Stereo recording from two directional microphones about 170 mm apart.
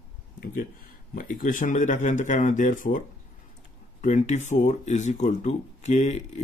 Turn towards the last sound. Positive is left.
turn(degrees=45)  # may be behind; listen again after turning